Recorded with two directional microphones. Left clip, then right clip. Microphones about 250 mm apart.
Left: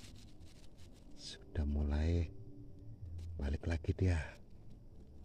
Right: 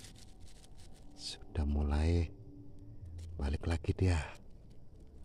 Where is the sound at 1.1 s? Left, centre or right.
Centre.